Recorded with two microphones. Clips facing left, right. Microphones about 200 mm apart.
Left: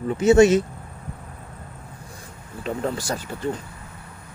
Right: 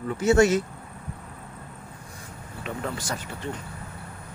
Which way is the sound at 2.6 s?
35° left (ahead or behind).